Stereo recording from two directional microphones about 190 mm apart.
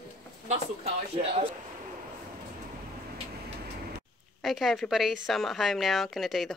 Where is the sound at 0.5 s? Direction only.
30° right (ahead or behind).